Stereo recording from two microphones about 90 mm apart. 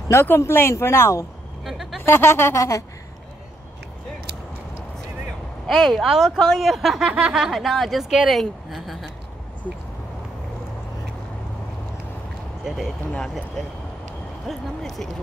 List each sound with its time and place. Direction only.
0.1 s speech: 25° left (ahead or behind)
1.6 s a sound: centre (ahead or behind)
2.0 s speech: 25° left (ahead or behind)
5.7 s speech: 5° left (ahead or behind)
12.6 s speech: centre (ahead or behind)
14.5 s speech: centre (ahead or behind)